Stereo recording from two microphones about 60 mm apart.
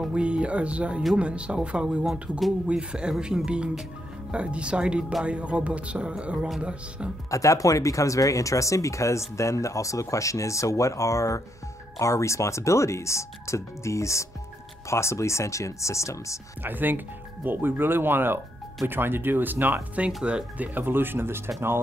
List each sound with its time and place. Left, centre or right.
0.1 s speech: centre
7.2 s speech: left
16.6 s speech: right
20.2 s speech: right